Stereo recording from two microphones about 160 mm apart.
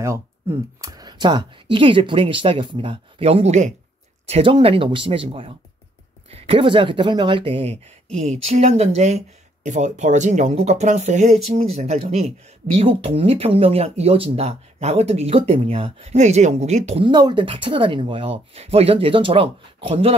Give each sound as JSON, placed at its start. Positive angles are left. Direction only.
{"t": 0.0, "sound": "speech", "side_deg": -15}
{"t": 4.3, "sound": "speech", "side_deg": -35}
{"t": 17.0, "sound": "speech", "side_deg": -30}